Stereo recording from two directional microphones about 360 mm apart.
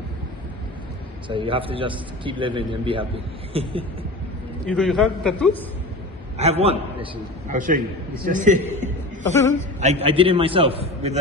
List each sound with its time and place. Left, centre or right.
1.3 s a man's voice: centre
4.6 s a man's voice: centre
6.3 s a man's voice: centre
8.5 s a man's voice: centre
9.8 s a man's voice: centre